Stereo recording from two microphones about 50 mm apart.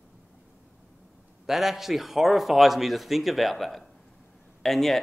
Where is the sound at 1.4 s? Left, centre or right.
Centre.